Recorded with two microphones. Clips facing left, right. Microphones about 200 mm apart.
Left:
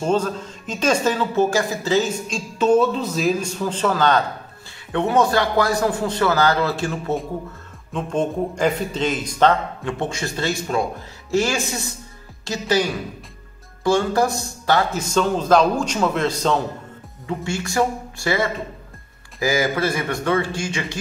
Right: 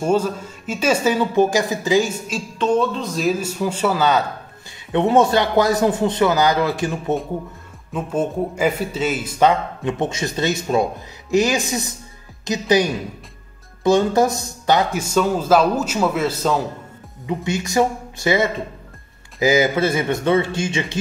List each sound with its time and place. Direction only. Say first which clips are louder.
0.0 s speech: right 2 dB; 10° right (ahead or behind)
2.6 s speech: left 2 dB; 5° left (ahead or behind); by 4.2 s 10° right (ahead or behind)
4.9 s speech: right 3 dB; 25° right (ahead or behind); by 16.6 s 5° right (ahead or behind)
17.3 s speech: right 3 dB; 20° right (ahead or behind)